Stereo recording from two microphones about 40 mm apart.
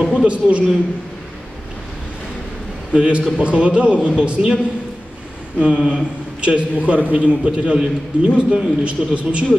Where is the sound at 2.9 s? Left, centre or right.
Right.